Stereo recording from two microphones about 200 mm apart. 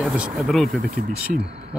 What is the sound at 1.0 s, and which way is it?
Speech, 50° right (ahead or behind).